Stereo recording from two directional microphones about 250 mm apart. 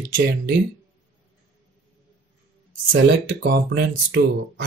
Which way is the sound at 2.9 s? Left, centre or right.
Right.